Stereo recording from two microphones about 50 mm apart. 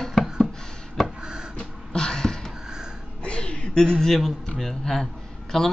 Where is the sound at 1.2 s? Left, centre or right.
Centre.